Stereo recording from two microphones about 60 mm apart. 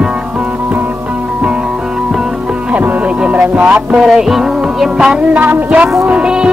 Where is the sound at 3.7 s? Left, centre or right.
Centre.